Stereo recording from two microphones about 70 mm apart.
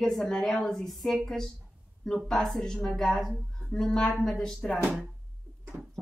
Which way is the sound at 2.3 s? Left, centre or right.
Centre.